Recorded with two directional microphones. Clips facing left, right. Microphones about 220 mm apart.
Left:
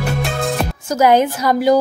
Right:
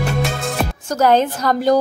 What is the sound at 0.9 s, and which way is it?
Speech, 10° left (ahead or behind).